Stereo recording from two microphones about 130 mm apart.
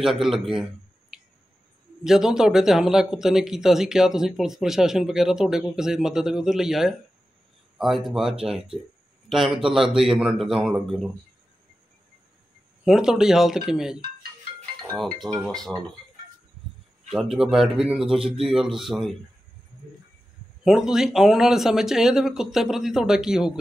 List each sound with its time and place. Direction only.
0.0 s speech: centre (ahead or behind)
2.0 s speech: 5° right (ahead or behind)
12.8 s speech: 5° right (ahead or behind)
17.1 s speech: 5° right (ahead or behind)
20.6 s speech: 5° right (ahead or behind)